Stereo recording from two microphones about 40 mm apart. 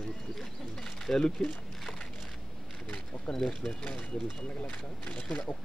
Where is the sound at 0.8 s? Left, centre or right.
Centre.